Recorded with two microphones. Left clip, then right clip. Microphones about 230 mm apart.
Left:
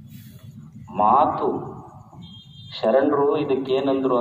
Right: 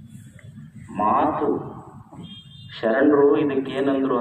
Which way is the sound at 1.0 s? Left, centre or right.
Left.